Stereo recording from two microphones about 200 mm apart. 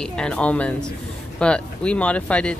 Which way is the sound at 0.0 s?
5° left (ahead or behind).